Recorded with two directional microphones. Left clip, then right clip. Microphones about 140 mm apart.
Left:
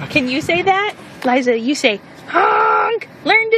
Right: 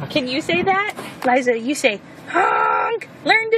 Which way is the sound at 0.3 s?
35° left (ahead or behind).